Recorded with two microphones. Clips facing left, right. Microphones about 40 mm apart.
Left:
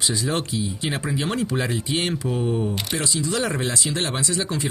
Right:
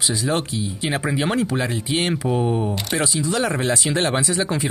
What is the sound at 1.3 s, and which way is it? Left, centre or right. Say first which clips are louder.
Speech: right 2 dB; centre.